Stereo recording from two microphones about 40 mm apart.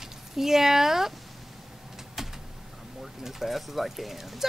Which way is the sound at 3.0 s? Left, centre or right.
Centre.